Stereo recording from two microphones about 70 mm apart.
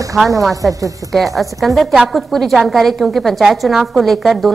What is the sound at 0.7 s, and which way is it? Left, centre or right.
Speech, right.